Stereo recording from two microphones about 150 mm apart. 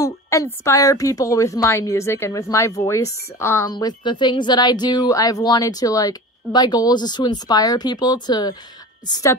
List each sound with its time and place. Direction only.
0.0 s a sound: 20° left (ahead or behind)
0.7 s speech: 20° left (ahead or behind)
3.7 s speech: 30° left (ahead or behind)